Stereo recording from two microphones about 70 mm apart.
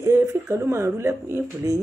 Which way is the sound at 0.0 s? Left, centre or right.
Right.